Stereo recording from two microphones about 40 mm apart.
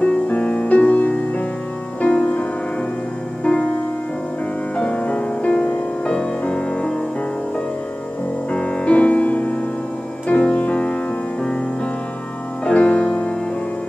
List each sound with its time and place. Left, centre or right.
0.0 s music: left
3.4 s music: left
4.7 s music: left
8.5 s music: left
12.6 s music: left